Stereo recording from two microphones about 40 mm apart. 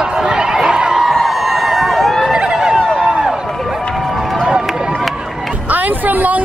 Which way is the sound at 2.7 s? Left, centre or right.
Centre.